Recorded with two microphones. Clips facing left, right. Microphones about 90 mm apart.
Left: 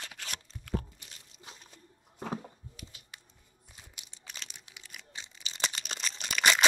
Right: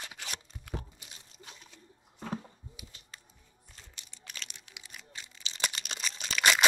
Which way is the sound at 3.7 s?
15° left (ahead or behind).